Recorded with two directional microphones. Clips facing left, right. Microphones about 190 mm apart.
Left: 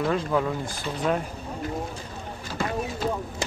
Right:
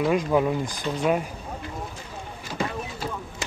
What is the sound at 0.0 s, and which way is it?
Speech, 15° right (ahead or behind).